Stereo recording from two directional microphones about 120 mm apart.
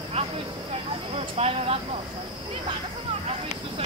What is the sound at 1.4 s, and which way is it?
Speech, 60° right (ahead or behind).